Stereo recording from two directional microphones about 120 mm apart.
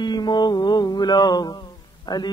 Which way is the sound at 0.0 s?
35° left (ahead or behind).